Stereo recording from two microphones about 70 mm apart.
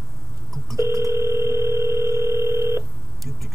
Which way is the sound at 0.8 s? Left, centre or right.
Right.